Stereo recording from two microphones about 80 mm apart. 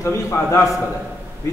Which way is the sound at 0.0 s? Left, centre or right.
Left.